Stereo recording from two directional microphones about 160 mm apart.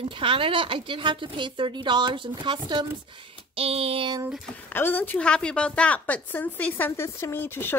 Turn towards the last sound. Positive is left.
turn(degrees=15)  # may be behind; listen again after turning